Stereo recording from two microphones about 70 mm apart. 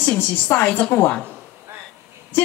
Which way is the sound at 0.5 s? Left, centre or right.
Left.